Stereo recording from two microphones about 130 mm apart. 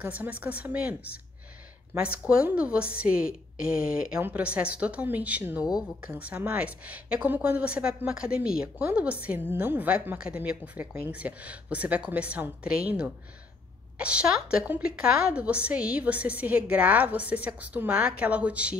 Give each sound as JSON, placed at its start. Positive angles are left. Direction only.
{"t": 0.0, "sound": "a woman's voice", "side_deg": -10}
{"t": 2.0, "sound": "a woman's voice", "side_deg": -10}